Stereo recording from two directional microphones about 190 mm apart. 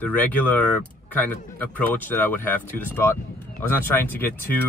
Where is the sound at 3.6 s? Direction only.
10° left (ahead or behind).